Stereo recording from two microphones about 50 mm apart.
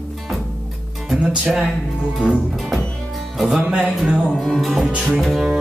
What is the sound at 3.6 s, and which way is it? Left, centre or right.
Music, centre.